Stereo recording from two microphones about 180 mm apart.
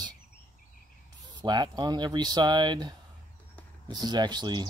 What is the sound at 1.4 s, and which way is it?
Speech, 25° right (ahead or behind).